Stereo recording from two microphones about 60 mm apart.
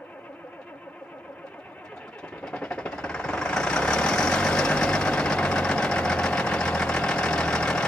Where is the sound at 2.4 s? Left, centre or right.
Centre.